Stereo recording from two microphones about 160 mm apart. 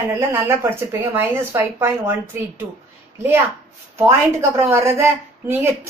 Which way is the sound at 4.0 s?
15° right (ahead or behind).